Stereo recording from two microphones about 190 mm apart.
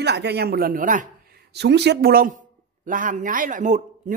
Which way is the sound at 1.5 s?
60° right (ahead or behind).